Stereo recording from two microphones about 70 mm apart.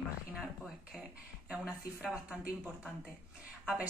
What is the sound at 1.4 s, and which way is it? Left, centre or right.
Speech, centre.